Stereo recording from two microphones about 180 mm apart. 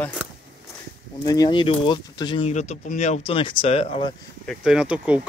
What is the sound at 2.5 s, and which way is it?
Speech, 40° left (ahead or behind).